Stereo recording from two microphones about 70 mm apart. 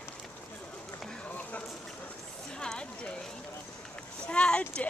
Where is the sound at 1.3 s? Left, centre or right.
Left.